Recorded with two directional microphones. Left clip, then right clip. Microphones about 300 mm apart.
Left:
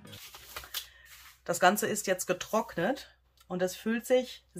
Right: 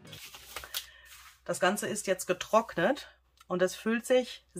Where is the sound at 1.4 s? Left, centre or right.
Centre.